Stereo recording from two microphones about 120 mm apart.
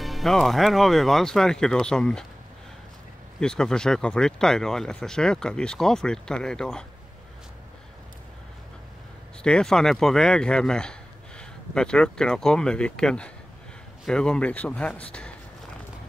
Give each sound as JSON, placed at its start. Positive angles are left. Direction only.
{"t": 0.0, "sound": "speech", "side_deg": 0}
{"t": 3.3, "sound": "speech", "side_deg": 5}
{"t": 9.4, "sound": "a man's voice", "side_deg": 5}